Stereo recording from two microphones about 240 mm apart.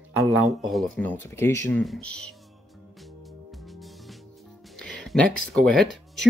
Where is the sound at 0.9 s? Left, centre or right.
Centre.